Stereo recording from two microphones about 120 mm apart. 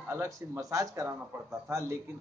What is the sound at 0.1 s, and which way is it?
Speech, 25° right (ahead or behind).